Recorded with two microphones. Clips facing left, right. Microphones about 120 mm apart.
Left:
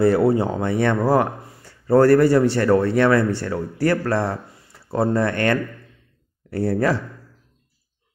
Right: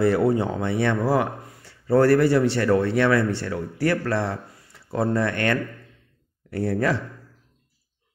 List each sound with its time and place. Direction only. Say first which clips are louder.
0.0 s speech: left 3 dB; 35° left (ahead or behind)